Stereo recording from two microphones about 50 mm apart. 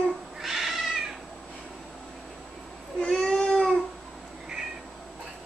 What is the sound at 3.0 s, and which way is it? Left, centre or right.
Baby cry, centre.